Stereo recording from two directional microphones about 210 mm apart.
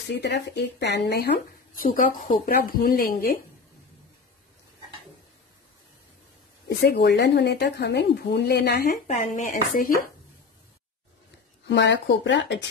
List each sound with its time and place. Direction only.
0.1 s speech: 55° left (ahead or behind)
6.7 s speech: 50° left (ahead or behind)
11.6 s speech: 55° left (ahead or behind)